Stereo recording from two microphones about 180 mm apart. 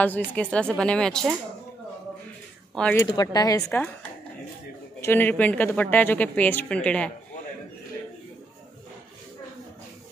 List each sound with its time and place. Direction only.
0.3 s speech: 5° left (ahead or behind)
2.7 s speech: 5° left (ahead or behind)
3.0 s a woman's voice: 20° left (ahead or behind)
5.0 s speech: 10° left (ahead or behind)